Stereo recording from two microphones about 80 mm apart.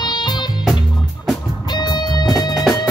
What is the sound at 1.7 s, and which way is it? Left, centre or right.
Music, left.